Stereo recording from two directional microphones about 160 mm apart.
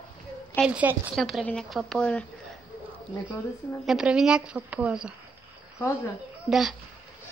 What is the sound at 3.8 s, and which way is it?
A woman's voice, 5° right (ahead or behind).